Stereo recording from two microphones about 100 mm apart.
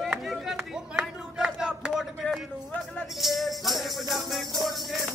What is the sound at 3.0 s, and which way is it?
Music, centre (ahead or behind).